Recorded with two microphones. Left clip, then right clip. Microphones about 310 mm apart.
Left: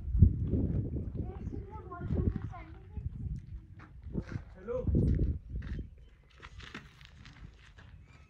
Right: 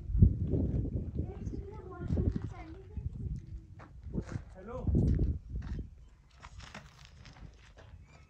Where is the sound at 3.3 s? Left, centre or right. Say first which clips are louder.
Right 1 dB; centre.